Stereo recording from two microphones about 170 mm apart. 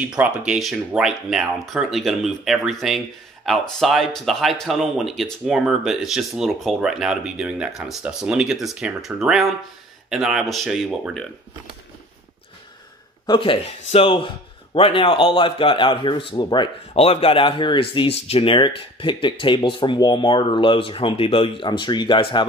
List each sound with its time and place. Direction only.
0.5 s speech: 5° right (ahead or behind)
13.3 s a man's voice: 30° left (ahead or behind)